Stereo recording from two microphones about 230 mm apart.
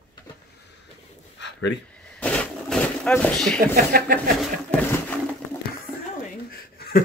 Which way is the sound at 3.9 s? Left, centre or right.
Right.